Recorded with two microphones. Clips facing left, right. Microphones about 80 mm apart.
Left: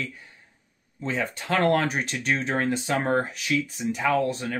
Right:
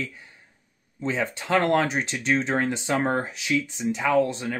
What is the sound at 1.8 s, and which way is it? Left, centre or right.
Speech, right.